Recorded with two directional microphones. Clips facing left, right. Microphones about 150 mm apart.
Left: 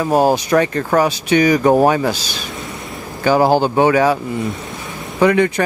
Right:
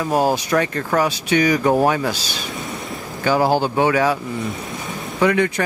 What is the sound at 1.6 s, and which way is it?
Speech, 35° left (ahead or behind).